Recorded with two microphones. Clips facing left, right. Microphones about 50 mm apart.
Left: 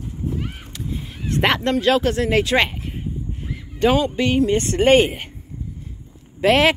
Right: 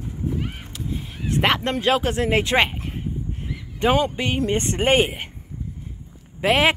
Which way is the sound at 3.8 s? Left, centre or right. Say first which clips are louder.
Left 2 dB; right.